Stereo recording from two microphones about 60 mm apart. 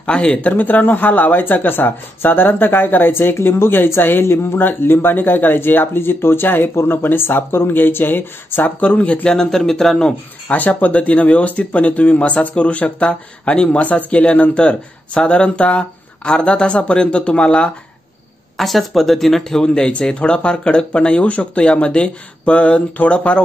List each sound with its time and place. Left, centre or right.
0.0 s speech: centre; by 8.6 s left
8.6 s speech: left
10.5 s speech: left
18.6 s speech: centre